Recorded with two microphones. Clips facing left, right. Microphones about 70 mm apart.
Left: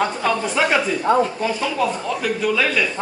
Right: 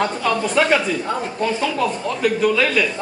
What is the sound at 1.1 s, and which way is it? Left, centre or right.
Speech, left.